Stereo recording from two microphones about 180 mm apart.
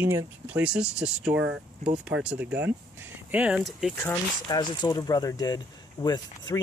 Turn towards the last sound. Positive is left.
turn(degrees=25)  # may be behind; listen again after turning